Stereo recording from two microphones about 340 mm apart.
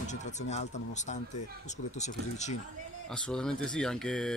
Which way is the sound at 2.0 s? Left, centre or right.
Centre.